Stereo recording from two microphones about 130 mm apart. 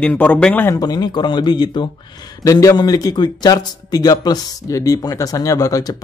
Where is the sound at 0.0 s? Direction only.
10° left (ahead or behind).